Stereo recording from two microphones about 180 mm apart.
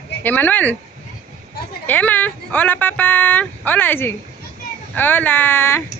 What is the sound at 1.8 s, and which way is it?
Speech, 10° left (ahead or behind).